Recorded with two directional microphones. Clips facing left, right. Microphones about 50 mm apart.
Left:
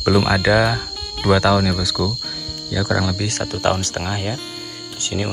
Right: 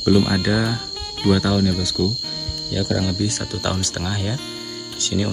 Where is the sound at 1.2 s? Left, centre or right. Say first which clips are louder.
Left 3 dB; left.